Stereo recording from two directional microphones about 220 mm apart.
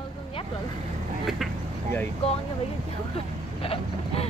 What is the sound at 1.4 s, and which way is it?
Vehicle, centre (ahead or behind).